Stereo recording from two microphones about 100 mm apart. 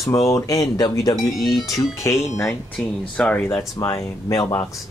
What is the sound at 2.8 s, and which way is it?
Speech, 10° left (ahead or behind).